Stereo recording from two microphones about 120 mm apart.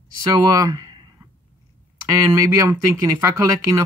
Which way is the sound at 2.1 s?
25° right (ahead or behind).